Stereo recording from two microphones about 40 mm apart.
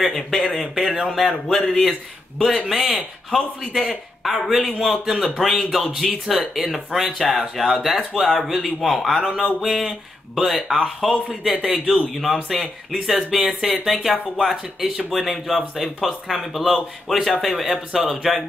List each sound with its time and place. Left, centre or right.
0.0 s a man's voice: centre